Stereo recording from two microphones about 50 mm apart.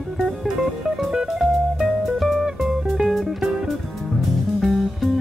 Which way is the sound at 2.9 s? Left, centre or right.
Centre.